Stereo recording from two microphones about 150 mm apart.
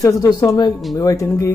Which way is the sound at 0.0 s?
25° left (ahead or behind).